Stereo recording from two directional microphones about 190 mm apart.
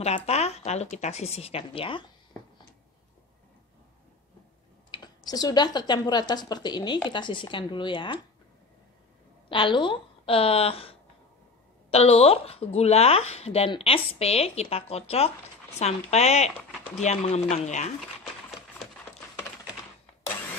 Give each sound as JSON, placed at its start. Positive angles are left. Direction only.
{"t": 0.0, "sound": "speech", "side_deg": 35}
{"t": 4.9, "sound": "speech", "side_deg": 20}
{"t": 9.5, "sound": "speech", "side_deg": 25}